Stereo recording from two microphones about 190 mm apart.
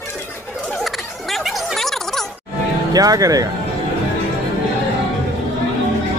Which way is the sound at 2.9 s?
20° right (ahead or behind).